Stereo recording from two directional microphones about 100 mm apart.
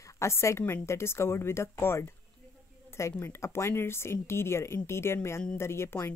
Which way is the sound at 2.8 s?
30° left (ahead or behind).